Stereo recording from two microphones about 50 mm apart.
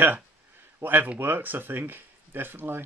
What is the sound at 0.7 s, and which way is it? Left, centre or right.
Speech, right.